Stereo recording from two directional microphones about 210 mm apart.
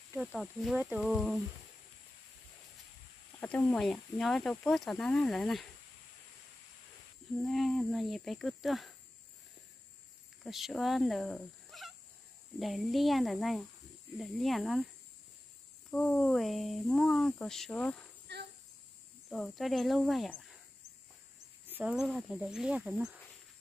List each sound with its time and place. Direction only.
0.1 s speech: 5° right (ahead or behind)
3.3 s speech: 5° left (ahead or behind)
7.4 s speech: centre (ahead or behind)
10.4 s speech: centre (ahead or behind)
15.9 s speech: 5° left (ahead or behind)
18.3 s a sound: 55° right (ahead or behind)
19.2 s speech: centre (ahead or behind)
21.6 s speech: 10° right (ahead or behind)